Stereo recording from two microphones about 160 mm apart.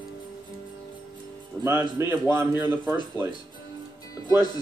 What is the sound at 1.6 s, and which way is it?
A man's voice, 15° right (ahead or behind).